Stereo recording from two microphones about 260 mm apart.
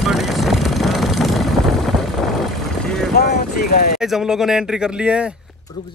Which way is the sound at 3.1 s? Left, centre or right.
Left.